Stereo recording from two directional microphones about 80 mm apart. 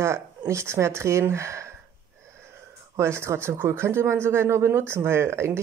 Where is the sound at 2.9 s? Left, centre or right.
Right.